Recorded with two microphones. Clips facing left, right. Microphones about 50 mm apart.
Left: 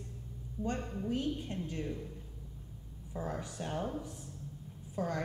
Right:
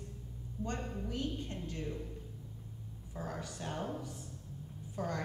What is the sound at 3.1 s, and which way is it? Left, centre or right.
Speech, centre.